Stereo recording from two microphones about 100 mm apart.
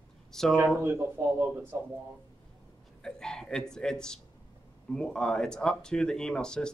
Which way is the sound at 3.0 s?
5° left (ahead or behind).